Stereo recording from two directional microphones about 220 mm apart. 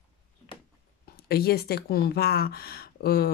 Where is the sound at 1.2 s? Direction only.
45° left (ahead or behind).